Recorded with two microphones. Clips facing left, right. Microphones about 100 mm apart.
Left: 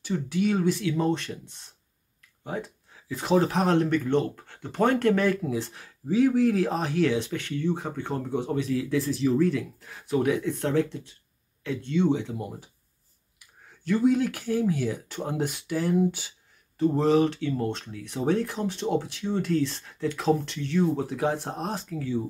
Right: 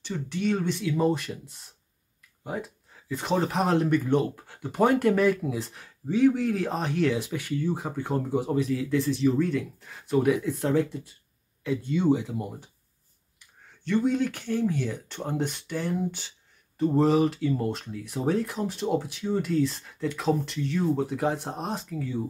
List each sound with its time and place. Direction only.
0.0 s speech: 5° left (ahead or behind)
13.8 s speech: 5° left (ahead or behind)